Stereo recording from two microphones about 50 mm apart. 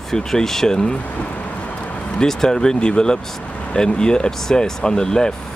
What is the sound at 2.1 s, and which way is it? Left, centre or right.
Speech, centre.